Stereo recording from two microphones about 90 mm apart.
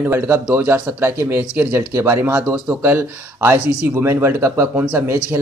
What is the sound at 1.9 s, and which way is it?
Speech, 30° right (ahead or behind).